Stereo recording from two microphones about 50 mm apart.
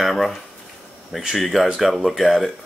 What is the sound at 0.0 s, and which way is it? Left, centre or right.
Speech, centre.